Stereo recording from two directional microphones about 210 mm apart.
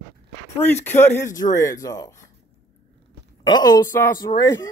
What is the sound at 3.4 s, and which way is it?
Speech, 20° left (ahead or behind).